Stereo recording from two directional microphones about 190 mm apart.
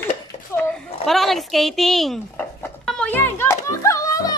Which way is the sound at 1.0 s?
Centre (ahead or behind).